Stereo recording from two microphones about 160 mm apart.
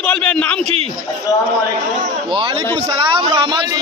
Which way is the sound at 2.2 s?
30° right (ahead or behind).